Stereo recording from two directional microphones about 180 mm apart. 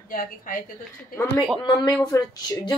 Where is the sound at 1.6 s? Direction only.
25° left (ahead or behind).